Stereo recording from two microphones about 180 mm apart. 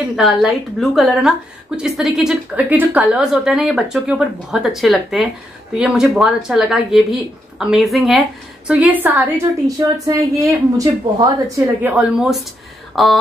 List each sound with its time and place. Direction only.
0.1 s a woman's voice: centre (ahead or behind)